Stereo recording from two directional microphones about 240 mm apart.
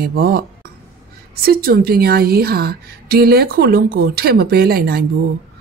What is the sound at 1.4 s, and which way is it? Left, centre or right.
A woman's voice, right.